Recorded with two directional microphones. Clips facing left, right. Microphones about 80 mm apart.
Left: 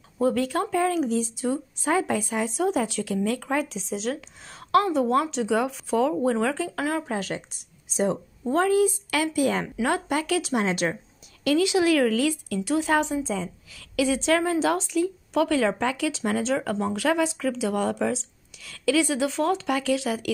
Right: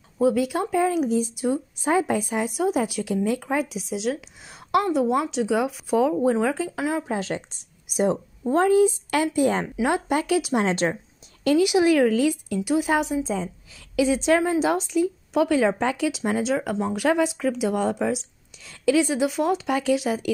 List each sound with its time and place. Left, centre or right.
0.2 s speech: centre
7.1 s speech: right
9.8 s speech: centre
10.6 s speech: right
11.4 s speech: centre
13.2 s speech: right